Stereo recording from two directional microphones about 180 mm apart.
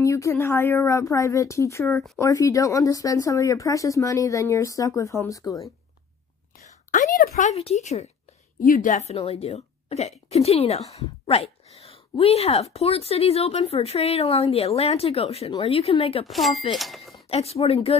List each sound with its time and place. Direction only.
0.0 s speech: 15° left (ahead or behind)
6.9 s speech: 50° left (ahead or behind)
8.5 s speech: 50° left (ahead or behind); by 16.3 s 35° left (ahead or behind)
16.3 s speech: centre (ahead or behind)
17.3 s speech: 35° left (ahead or behind)